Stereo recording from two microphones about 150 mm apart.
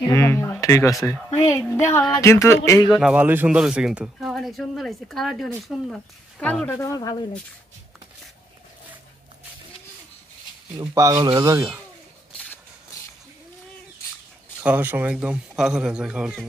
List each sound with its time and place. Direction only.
0.1 s speech: 15° left (ahead or behind)
3.0 s speech: 10° right (ahead or behind); by 6.8 s 10° left (ahead or behind)
6.8 s speech: 25° left (ahead or behind)
10.8 s a man's voice: 20° right (ahead or behind)
14.6 s a man's voice: 10° right (ahead or behind)